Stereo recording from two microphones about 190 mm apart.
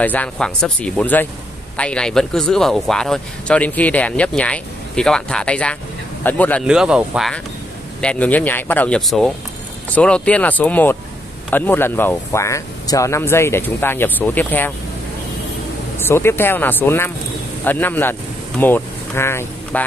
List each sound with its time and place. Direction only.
0.0 s speech: 10° left (ahead or behind)
6.6 s speech: 5° right (ahead or behind)
16.0 s speech: 10° left (ahead or behind)